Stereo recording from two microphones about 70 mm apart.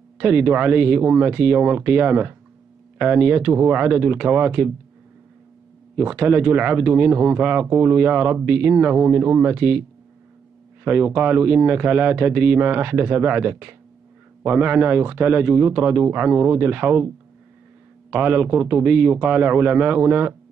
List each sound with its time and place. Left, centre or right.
0.2 s speech: right
5.9 s speech: right
18.1 s speech: right